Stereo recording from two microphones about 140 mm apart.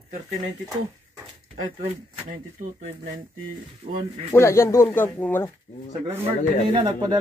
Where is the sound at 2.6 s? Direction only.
65° right (ahead or behind).